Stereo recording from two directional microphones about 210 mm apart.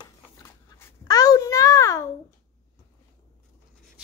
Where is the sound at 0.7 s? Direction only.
15° left (ahead or behind).